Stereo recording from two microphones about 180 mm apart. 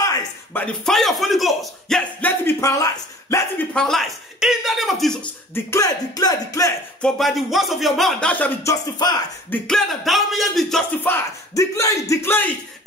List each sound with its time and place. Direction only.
0.5 s speech: 5° left (ahead or behind)
3.7 s speech: centre (ahead or behind)
5.5 s speech: 15° left (ahead or behind)
7.0 s speech: centre (ahead or behind)
11.1 s speech: 15° left (ahead or behind)